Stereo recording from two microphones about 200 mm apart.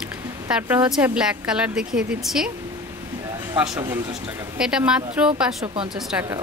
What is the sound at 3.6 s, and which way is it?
Speech, 15° right (ahead or behind).